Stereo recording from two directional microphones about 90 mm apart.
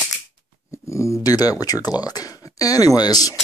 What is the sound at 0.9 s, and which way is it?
Speech, 35° left (ahead or behind).